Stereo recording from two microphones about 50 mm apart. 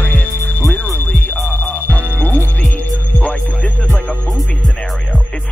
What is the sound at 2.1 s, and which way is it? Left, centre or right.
Heart sounds, left.